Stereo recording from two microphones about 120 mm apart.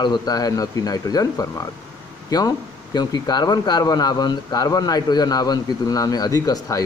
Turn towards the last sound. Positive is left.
turn(degrees=30)  # may be behind; listen again after turning